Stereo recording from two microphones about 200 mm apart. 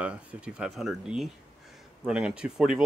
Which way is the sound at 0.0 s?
5° right (ahead or behind).